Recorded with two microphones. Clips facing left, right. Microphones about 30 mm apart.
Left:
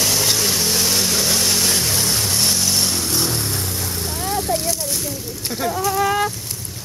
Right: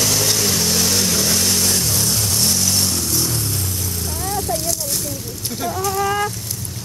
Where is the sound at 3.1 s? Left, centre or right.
Left.